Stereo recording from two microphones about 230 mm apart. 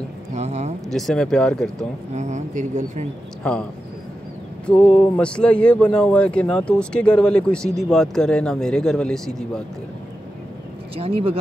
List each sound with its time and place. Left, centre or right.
0.3 s speech: right
0.8 s speech: centre
2.1 s speech: right
4.8 s speech: centre
11.0 s speech: right